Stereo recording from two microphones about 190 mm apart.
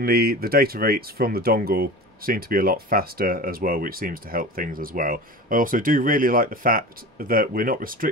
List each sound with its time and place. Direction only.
0.0 s speech: 55° right (ahead or behind)